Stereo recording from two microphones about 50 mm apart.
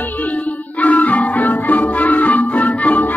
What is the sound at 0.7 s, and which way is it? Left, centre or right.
Music, left.